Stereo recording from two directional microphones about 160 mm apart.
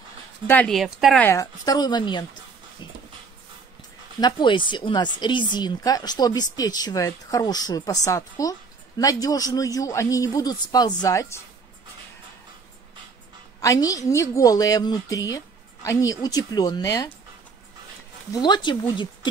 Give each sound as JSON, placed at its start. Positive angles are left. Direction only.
{"t": 0.5, "sound": "speech", "side_deg": 10}
{"t": 0.7, "sound": "speech", "side_deg": 0}
{"t": 1.2, "sound": "a woman's voice", "side_deg": 20}
{"t": 4.2, "sound": "a woman's voice", "side_deg": 30}
{"t": 13.6, "sound": "a woman's voice", "side_deg": 20}
{"t": 18.3, "sound": "a woman's voice", "side_deg": 30}